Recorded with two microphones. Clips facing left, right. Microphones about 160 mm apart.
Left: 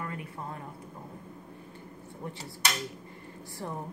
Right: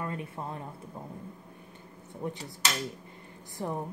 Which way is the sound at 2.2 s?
20° right (ahead or behind).